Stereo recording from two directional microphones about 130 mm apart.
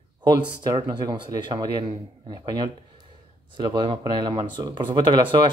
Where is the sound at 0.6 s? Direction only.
35° right (ahead or behind).